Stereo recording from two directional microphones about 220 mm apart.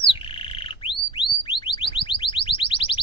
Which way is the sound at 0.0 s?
25° left (ahead or behind).